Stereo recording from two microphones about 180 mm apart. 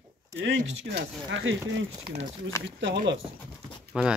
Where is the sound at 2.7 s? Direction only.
85° right.